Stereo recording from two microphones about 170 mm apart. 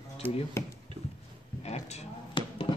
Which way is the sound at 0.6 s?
15° left (ahead or behind).